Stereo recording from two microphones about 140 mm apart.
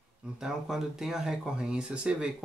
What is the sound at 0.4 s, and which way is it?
Speech, 5° right (ahead or behind).